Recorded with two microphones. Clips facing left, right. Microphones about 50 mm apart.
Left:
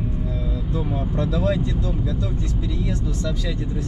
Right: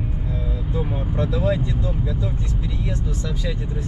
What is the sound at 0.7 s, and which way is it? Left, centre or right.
Speech, centre.